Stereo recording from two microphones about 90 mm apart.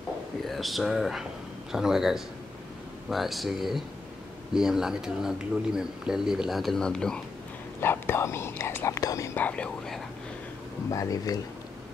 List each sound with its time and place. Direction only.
0.5 s speech: centre (ahead or behind)
7.8 s whispering: 25° left (ahead or behind)
9.3 s whispering: 15° left (ahead or behind)
10.9 s speech: 40° left (ahead or behind)